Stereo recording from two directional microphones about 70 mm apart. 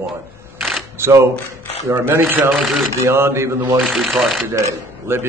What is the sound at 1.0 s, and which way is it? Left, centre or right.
Speech, right.